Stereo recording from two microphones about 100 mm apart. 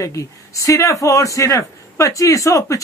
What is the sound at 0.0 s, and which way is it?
Speech, 30° left (ahead or behind).